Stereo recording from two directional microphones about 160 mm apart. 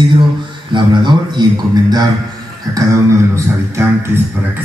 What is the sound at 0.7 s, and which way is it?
A man's voice, 30° right (ahead or behind).